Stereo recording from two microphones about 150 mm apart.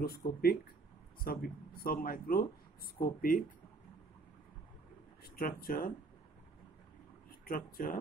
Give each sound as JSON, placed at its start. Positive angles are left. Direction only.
{"t": 0.0, "sound": "speech", "side_deg": 90}
{"t": 5.2, "sound": "speech", "side_deg": 80}
{"t": 7.2, "sound": "speech", "side_deg": 75}